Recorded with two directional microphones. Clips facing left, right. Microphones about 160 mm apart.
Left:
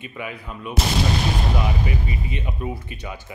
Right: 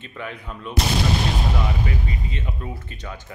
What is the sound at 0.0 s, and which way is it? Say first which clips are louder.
Speech: left 1 dB; 10° left (ahead or behind).